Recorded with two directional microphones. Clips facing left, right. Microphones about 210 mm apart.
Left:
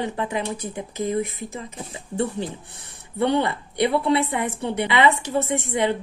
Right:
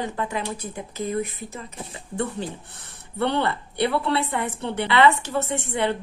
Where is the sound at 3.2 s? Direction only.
15° left (ahead or behind).